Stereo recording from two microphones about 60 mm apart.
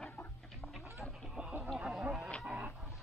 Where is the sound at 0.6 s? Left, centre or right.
Centre.